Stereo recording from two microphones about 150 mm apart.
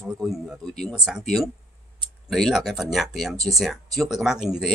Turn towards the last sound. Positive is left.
turn(degrees=0)  # may be behind; listen again after turning